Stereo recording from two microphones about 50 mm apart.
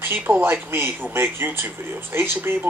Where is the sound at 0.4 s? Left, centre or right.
Right.